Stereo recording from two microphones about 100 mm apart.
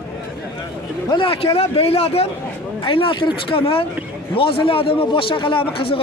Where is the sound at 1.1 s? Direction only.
65° left (ahead or behind); by 2.2 s 90° left.